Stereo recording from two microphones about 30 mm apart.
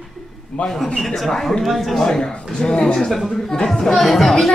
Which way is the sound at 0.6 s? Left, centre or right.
Left.